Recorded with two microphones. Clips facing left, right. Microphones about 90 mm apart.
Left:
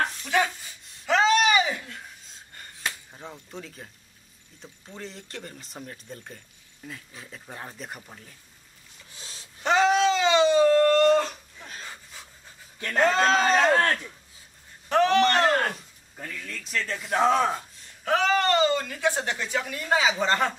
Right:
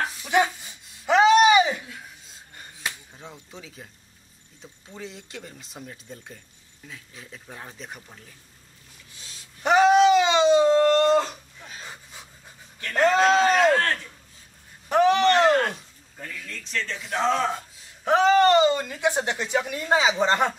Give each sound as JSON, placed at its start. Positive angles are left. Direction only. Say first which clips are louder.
{"t": 0.3, "sound": "a sound", "louder": "right 6 dB", "side_deg": -20}
{"t": 3.1, "sound": "speech", "louder": "left 2 dB", "side_deg": 0}
{"t": 9.6, "sound": "a sound", "louder": "right 4 dB", "side_deg": -15}
{"t": 11.6, "sound": "pant", "louder": "even", "side_deg": 0}
{"t": 11.9, "sound": "pant", "louder": "right 1 dB", "side_deg": -15}
{"t": 13.1, "sound": "speech", "louder": "right 4 dB", "side_deg": -10}
{"t": 14.9, "sound": "a sound", "louder": "right 2 dB", "side_deg": -15}
{"t": 16.3, "sound": "speech", "louder": "even", "side_deg": 5}
{"t": 18.0, "sound": "speech", "louder": "right 5 dB", "side_deg": -20}